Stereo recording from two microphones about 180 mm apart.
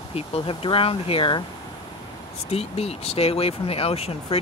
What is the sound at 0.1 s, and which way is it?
Speech, 30° left (ahead or behind).